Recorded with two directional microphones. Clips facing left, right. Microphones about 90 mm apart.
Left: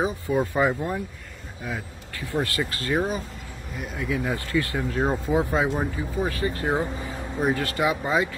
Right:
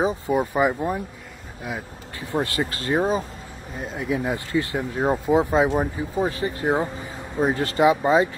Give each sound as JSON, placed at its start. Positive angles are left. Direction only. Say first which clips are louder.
{"t": 0.0, "sound": "speech", "louder": "right 2 dB", "side_deg": -20}